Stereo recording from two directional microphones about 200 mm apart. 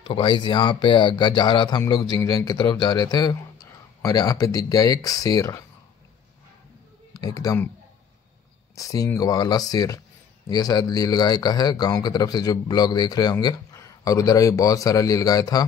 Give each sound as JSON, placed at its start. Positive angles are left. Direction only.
{"t": 0.0, "sound": "speech", "side_deg": 25}
{"t": 7.2, "sound": "speech", "side_deg": 20}
{"t": 8.7, "sound": "speech", "side_deg": 15}